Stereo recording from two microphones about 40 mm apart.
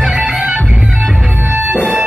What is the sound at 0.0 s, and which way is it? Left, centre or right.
Music, centre.